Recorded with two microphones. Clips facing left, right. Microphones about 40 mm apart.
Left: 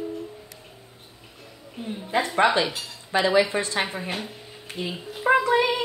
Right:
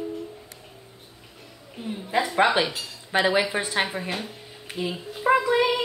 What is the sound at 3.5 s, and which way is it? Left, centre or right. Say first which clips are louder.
Speech: even; centre.